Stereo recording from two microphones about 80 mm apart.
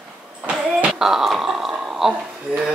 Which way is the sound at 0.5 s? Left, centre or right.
Centre.